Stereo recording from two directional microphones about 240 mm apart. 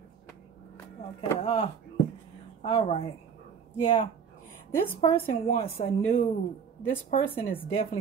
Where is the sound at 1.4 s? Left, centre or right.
Left.